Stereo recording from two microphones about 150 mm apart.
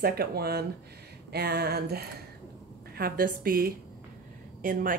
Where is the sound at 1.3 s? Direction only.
90° right.